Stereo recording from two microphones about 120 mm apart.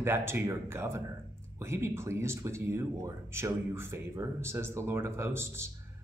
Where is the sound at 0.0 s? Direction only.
20° right (ahead or behind).